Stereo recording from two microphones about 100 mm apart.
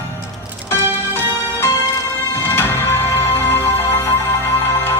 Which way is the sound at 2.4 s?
25° left (ahead or behind).